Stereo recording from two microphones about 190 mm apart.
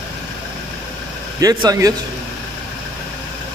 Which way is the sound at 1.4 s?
20° right (ahead or behind).